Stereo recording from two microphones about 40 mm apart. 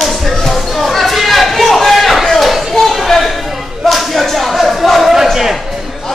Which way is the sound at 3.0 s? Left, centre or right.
Centre.